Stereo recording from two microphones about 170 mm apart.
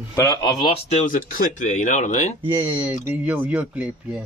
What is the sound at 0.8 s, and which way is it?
Speech, 45° left (ahead or behind).